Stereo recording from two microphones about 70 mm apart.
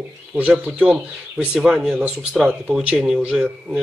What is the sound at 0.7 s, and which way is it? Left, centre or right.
Speech, centre.